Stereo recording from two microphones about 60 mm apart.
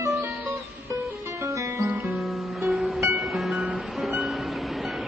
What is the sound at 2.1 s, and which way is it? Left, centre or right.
Music, centre.